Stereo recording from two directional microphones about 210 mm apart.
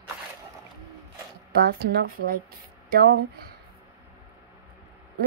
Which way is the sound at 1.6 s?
50° right (ahead or behind).